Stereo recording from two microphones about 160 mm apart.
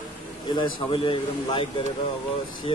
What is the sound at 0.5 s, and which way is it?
A man's voice, 30° left (ahead or behind).